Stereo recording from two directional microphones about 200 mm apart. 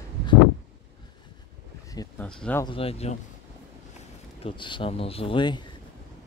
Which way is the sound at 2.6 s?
30° left (ahead or behind).